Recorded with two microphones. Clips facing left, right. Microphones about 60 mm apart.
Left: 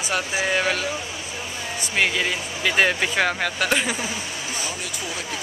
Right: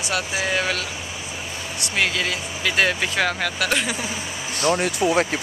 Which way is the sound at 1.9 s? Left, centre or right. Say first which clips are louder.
Left 1 dB; centre.